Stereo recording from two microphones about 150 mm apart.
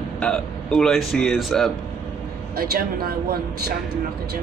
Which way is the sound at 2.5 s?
90° right.